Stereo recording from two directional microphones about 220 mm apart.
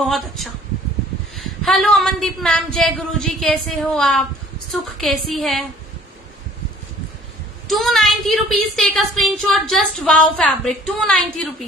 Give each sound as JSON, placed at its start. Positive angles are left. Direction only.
{"t": 1.3, "sound": "a woman's voice", "side_deg": 0}
{"t": 7.6, "sound": "a woman's voice", "side_deg": 0}